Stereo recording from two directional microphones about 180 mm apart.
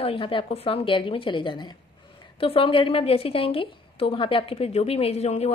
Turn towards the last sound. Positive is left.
turn(degrees=35)  # may be behind; listen again after turning